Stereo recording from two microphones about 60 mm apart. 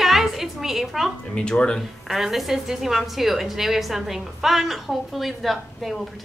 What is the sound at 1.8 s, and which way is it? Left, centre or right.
A woman's voice, centre.